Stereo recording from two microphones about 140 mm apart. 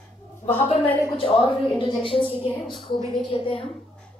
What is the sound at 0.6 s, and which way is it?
Speech, 40° left (ahead or behind).